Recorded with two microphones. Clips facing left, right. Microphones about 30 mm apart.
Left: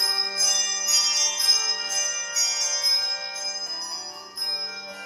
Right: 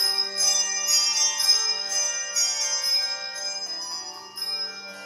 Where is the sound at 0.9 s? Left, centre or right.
Centre.